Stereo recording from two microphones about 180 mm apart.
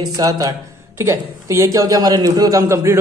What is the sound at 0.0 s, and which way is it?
Speech, 20° right (ahead or behind).